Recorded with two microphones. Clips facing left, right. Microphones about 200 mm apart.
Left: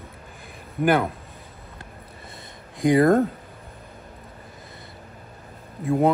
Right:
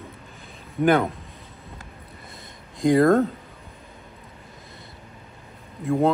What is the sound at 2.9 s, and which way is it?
Speech, centre (ahead or behind).